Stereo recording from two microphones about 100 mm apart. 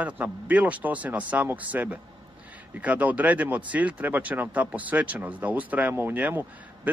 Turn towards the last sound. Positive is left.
turn(degrees=-15)  # may be behind; listen again after turning